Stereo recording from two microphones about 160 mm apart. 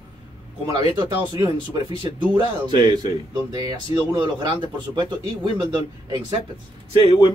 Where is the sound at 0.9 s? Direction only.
25° right (ahead or behind).